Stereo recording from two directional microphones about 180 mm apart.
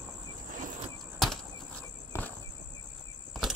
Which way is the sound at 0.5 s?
45° right (ahead or behind).